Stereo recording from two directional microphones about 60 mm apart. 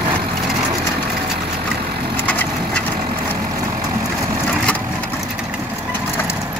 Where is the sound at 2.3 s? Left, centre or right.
Left.